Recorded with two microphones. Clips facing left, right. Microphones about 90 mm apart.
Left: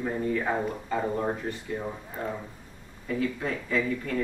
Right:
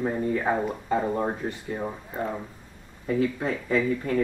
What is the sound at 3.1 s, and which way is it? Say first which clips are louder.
Speech: right 4 dB; 30° right (ahead or behind).